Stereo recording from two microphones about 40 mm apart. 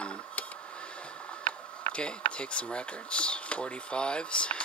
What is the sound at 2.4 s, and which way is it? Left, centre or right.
Speech, left.